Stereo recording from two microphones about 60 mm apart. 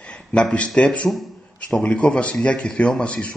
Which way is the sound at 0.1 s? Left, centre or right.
Centre.